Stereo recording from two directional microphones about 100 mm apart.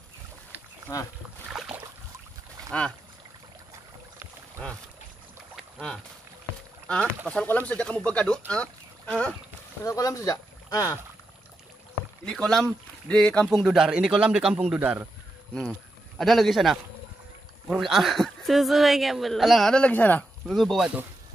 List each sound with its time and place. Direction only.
0.9 s speech: 40° left (ahead or behind)
1.5 s boat: 5° right (ahead or behind)
2.7 s speech: 15° left (ahead or behind)
6.9 s speech: 10° left (ahead or behind)
9.8 s speech: 35° left (ahead or behind)
12.3 s a man's voice: 5° left (ahead or behind); by 15.0 s 15° right (ahead or behind)
16.2 s speech: centre (ahead or behind)
20.4 s speech: centre (ahead or behind)